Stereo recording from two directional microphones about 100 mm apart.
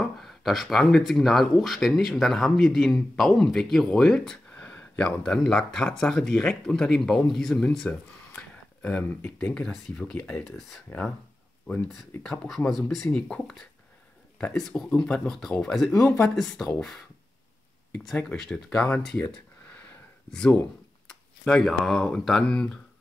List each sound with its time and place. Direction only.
0.0 s speech: 5° left (ahead or behind); by 11.0 s 20° left (ahead or behind)
12.2 s speech: 5° left (ahead or behind)